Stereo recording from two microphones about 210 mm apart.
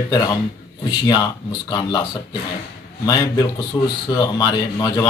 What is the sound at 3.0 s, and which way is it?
Speech, 20° left (ahead or behind).